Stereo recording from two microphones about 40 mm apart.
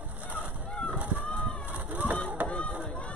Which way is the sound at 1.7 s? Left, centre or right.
Right.